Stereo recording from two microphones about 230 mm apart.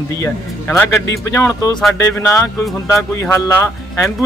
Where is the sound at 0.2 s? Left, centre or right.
Centre.